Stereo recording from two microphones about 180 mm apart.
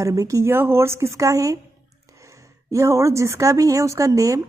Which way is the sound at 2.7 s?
15° right (ahead or behind).